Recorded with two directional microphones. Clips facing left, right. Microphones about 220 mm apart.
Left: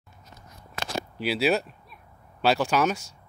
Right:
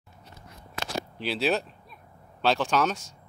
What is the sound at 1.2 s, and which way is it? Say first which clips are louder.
Speech: left 3 dB; 10° left (ahead or behind).